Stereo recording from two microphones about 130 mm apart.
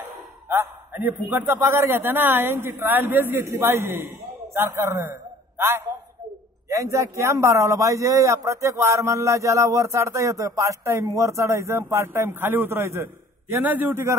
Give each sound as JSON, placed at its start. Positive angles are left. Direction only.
{"t": 0.5, "sound": "a man's voice", "side_deg": -15}